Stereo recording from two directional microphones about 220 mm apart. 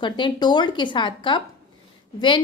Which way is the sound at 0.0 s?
20° left (ahead or behind).